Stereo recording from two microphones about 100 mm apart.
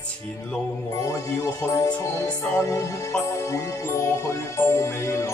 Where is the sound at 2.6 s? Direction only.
30° left (ahead or behind).